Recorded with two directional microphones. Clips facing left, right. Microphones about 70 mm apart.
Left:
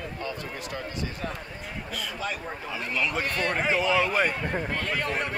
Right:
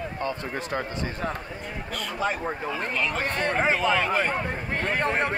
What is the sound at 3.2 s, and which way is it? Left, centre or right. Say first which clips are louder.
Speech: right 2 dB; right.